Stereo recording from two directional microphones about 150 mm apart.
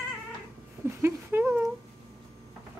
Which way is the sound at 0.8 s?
15° right (ahead or behind).